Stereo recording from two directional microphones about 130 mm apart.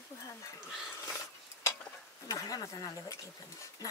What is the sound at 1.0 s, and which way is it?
Dishes, 20° left (ahead or behind).